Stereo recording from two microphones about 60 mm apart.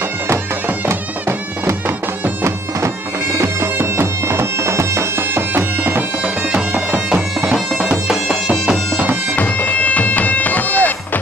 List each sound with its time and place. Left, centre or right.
3.3 s bagpipes: right
6.2 s bagpipes: centre
7.2 s bagpipes: centre
7.8 s music: centre
8.6 s bagpipes: right
9.3 s bagpipes: left